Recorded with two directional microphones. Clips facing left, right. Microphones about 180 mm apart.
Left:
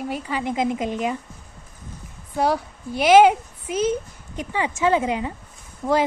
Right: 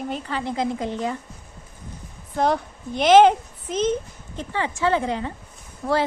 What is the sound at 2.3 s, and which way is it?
Speech, 5° left (ahead or behind).